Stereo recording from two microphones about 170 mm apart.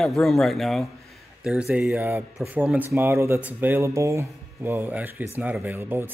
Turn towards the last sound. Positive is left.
turn(degrees=-15)  # may be behind; listen again after turning